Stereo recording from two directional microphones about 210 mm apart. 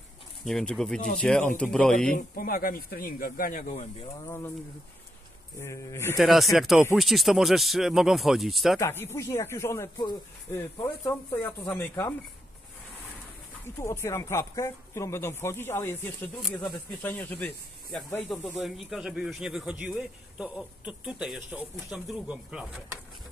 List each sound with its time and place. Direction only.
0.5 s speech: centre (ahead or behind)
2.1 s speech: 45° left (ahead or behind)
5.6 s speech: 15° left (ahead or behind)
6.1 s speech: centre (ahead or behind)
8.7 s speech: 10° left (ahead or behind)
13.7 s speech: 10° left (ahead or behind); by 22.9 s 5° right (ahead or behind)